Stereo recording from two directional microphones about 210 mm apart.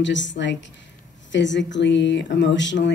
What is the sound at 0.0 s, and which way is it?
Speech, 60° left (ahead or behind).